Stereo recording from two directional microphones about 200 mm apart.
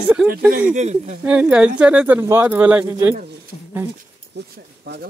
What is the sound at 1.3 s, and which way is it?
Speech, 5° right (ahead or behind).